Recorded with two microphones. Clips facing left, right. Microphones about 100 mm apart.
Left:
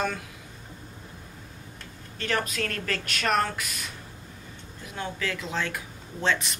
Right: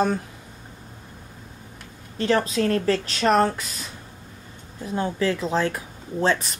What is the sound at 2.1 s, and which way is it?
Speech, 30° right (ahead or behind).